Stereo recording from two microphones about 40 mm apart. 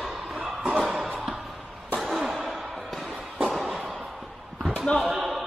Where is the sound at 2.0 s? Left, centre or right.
Centre.